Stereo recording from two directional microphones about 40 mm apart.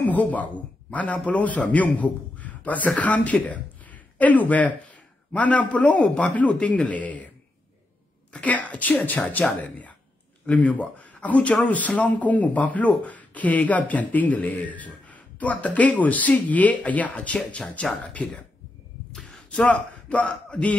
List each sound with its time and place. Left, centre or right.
0.0 s a man's voice: left
8.3 s speech: left
19.5 s a man's voice: left